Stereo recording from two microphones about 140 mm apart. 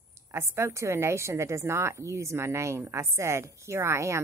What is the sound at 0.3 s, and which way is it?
A woman's voice, 20° right (ahead or behind).